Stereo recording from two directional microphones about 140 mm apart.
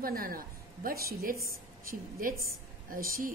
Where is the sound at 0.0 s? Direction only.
90° right.